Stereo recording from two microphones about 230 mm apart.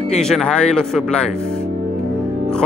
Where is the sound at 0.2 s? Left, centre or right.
Centre.